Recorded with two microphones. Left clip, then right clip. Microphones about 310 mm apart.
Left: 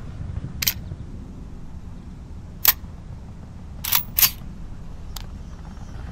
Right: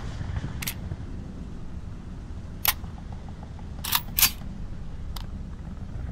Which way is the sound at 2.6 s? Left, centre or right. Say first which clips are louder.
Left 4 dB; centre.